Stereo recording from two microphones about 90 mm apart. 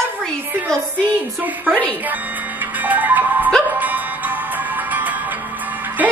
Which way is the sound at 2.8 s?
20° right (ahead or behind).